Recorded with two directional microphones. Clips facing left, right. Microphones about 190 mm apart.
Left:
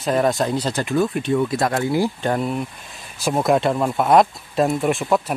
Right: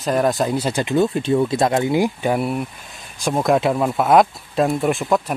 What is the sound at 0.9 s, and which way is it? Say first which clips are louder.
Speech: right 2 dB; 25° right (ahead or behind).